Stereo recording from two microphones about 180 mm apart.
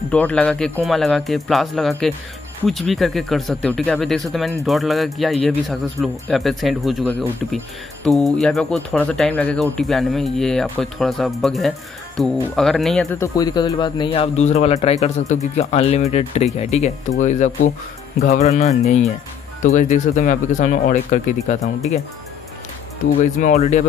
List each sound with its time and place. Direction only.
0.1 s speech: 5° left (ahead or behind)
13.2 s speech: 20° left (ahead or behind); by 21.5 s 45° left (ahead or behind)
23.4 s speech: 40° left (ahead or behind)